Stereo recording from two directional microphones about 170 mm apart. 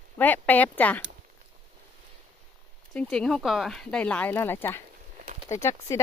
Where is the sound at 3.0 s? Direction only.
5° left (ahead or behind).